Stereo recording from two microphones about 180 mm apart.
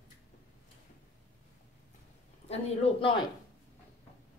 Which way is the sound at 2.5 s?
35° left (ahead or behind).